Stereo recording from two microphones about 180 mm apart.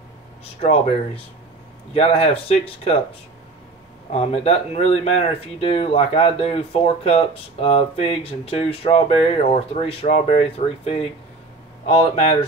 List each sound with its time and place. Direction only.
0.6 s speech: 35° left (ahead or behind)
4.1 s speech: 35° left (ahead or behind)